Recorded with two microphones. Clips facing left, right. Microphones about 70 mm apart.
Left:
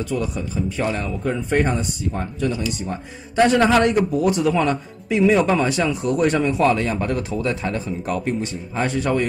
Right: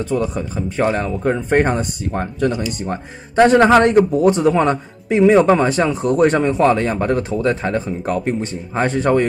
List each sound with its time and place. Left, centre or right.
0.0 s a man's voice: right
3.3 s a man's voice: right